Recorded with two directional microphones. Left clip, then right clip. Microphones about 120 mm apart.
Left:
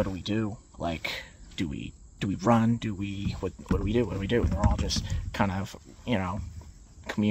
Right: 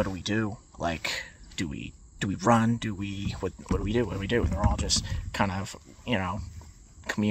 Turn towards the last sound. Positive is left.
turn(degrees=10)  # may be behind; listen again after turning